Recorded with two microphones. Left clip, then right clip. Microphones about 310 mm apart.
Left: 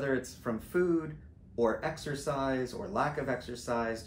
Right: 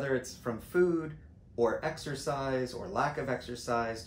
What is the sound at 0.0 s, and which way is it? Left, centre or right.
Speech, centre.